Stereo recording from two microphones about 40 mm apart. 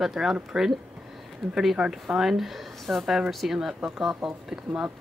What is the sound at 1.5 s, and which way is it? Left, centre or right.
Speech, centre.